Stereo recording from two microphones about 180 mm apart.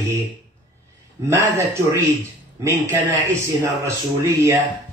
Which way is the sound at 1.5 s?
15° right (ahead or behind).